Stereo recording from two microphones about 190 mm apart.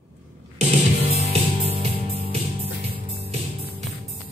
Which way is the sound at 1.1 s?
35° right (ahead or behind).